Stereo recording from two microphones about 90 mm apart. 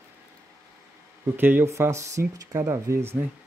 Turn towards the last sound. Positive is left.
turn(degrees=-25)  # may be behind; listen again after turning